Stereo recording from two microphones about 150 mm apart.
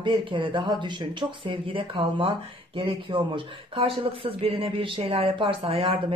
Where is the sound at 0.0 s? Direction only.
35° right (ahead or behind).